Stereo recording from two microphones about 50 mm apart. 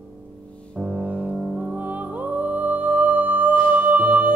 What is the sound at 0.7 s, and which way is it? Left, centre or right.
Music, centre.